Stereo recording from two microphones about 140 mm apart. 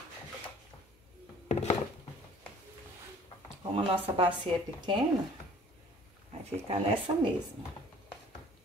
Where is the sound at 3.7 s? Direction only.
40° right (ahead or behind).